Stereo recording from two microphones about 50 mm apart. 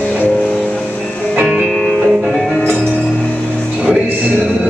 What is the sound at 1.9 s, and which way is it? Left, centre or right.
Music, centre.